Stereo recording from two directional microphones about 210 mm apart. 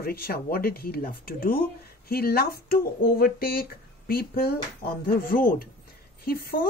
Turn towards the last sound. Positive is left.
turn(degrees=45)  # may be behind; listen again after turning